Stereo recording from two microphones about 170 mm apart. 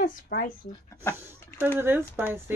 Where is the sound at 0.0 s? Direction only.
55° left (ahead or behind).